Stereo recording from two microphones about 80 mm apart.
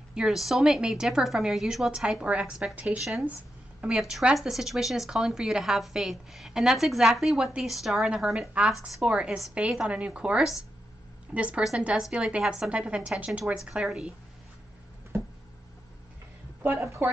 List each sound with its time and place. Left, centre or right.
0.1 s a woman's voice: centre
3.0 s a woman's voice: centre
15.1 s a sound: right
16.6 s speech: right